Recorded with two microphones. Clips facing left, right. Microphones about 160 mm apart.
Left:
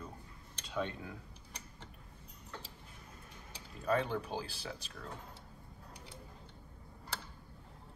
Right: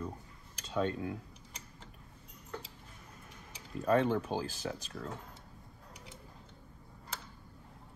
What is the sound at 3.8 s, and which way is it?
Speech, 40° right (ahead or behind).